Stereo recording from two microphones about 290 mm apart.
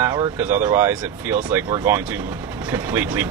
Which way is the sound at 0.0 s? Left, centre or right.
Centre.